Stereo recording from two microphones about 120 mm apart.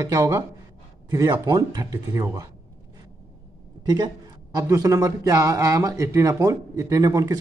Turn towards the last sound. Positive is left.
turn(degrees=-30)  # may be behind; listen again after turning